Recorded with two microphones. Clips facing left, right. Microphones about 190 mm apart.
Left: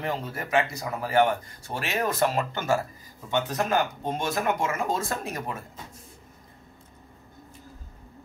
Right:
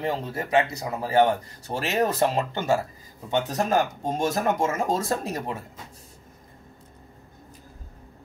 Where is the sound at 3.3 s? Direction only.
35° right (ahead or behind).